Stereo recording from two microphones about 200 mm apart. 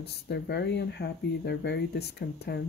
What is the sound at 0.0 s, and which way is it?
Speech, 55° left (ahead or behind).